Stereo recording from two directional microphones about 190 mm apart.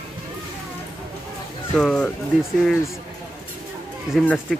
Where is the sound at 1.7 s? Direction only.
5° left (ahead or behind).